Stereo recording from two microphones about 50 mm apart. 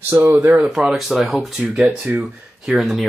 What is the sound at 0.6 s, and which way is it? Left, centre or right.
Speech, centre.